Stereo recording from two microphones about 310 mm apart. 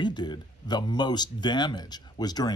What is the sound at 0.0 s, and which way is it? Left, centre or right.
Speech, centre.